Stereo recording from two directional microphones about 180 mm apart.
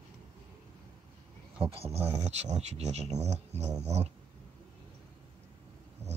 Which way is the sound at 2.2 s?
40° right (ahead or behind).